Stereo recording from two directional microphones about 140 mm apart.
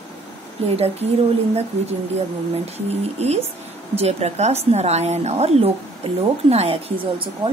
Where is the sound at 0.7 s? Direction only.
50° right (ahead or behind).